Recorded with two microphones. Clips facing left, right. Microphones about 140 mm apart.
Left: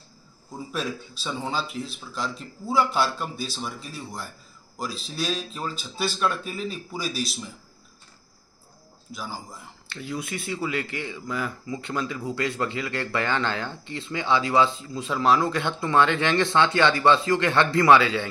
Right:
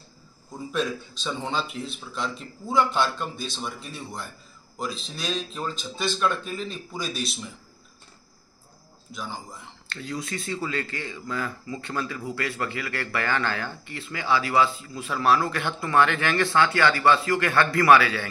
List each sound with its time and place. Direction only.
0.7 s speech: 5° left (ahead or behind)
9.1 s speech: 5° left (ahead or behind); by 18.3 s 20° left (ahead or behind)